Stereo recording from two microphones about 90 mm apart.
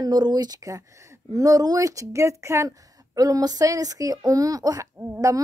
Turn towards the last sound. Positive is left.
turn(degrees=-35)  # may be behind; listen again after turning